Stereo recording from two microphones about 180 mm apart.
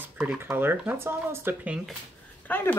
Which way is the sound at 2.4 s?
10° left (ahead or behind).